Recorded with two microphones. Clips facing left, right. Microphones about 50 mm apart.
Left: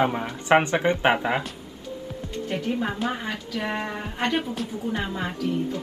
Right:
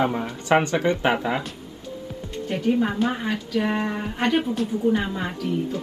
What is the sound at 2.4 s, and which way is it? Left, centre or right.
A woman's voice, centre.